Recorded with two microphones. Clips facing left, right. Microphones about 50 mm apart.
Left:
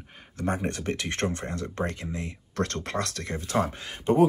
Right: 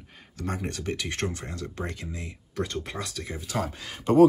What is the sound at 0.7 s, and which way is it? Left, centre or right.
Speech, left.